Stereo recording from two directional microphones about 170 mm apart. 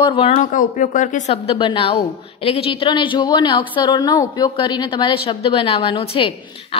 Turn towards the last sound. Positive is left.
turn(degrees=35)  # may be behind; listen again after turning